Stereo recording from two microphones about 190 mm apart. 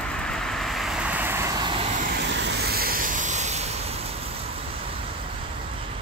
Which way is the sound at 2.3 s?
70° right (ahead or behind).